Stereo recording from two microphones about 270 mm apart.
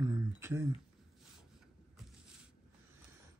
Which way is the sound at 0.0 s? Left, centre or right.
Centre.